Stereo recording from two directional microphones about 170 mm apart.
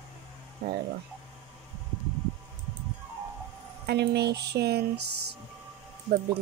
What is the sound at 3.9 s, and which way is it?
Speech, 75° right (ahead or behind).